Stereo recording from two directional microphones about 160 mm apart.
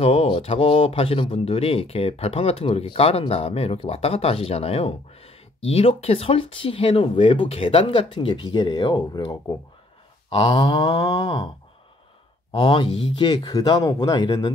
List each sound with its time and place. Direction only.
0.0 s speech: 40° left (ahead or behind)
11.1 s speech: 25° left (ahead or behind)
12.5 s speech: 30° left (ahead or behind)